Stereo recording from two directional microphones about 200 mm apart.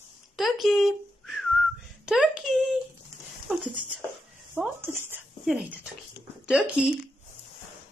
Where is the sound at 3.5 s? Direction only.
Centre (ahead or behind).